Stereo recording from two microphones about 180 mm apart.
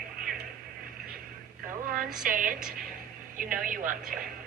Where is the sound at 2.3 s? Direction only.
50° right (ahead or behind).